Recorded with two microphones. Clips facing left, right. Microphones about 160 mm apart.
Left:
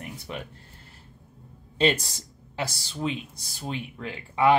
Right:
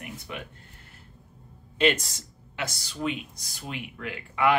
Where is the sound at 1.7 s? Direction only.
30° left (ahead or behind).